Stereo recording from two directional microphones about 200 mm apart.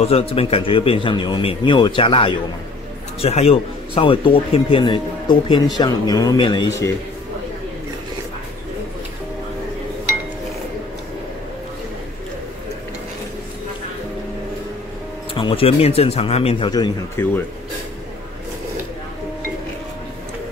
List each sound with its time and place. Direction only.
0.0 s speech: 30° left (ahead or behind)
15.3 s speech: 25° left (ahead or behind)